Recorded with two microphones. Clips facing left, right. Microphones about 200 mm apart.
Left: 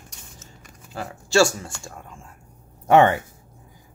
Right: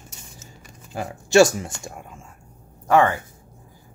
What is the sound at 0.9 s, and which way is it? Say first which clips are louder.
Speech: right 4 dB; 15° right (ahead or behind).